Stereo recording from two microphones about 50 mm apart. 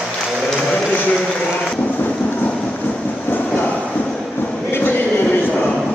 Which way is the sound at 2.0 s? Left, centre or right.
Left.